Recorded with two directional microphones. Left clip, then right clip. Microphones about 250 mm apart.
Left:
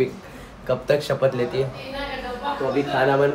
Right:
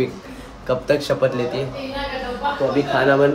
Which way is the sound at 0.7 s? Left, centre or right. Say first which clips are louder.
Right 2 dB; centre.